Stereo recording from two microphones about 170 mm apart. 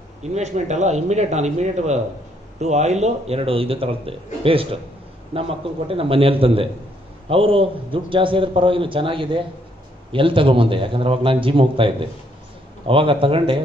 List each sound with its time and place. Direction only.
0.2 s a man's voice: 40° right (ahead or behind)